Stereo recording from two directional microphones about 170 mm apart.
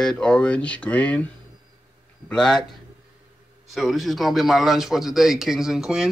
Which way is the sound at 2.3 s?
5° left (ahead or behind).